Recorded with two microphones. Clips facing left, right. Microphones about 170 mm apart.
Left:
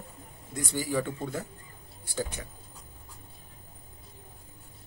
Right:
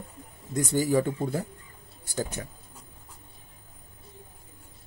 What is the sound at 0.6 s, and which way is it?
Speech, 45° right (ahead or behind).